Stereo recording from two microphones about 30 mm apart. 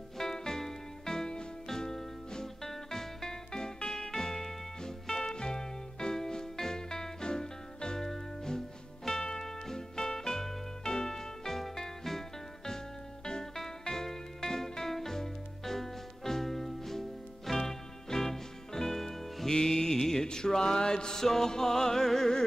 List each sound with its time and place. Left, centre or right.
0.2 s music: centre
19.5 s music: centre